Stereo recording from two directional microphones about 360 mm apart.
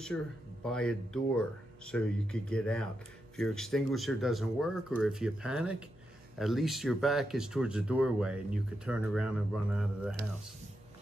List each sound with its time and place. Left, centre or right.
0.1 s speech: centre